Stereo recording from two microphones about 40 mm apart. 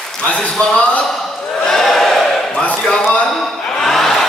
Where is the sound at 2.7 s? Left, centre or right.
Left.